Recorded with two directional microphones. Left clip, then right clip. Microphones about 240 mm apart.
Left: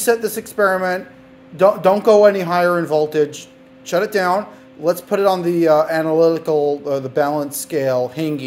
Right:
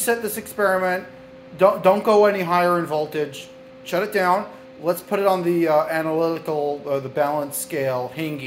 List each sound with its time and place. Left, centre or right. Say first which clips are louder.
0.0 s speech: left 5 dB; left